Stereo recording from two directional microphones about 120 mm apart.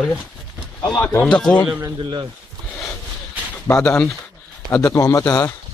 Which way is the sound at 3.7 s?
25° left (ahead or behind).